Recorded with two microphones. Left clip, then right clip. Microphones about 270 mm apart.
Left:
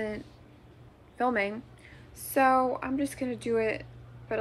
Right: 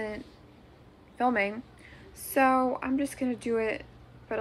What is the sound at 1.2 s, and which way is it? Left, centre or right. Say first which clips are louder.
A woman's voice: right 1 dB; centre.